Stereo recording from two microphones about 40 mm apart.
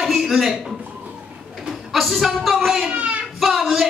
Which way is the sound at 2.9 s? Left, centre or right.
Right.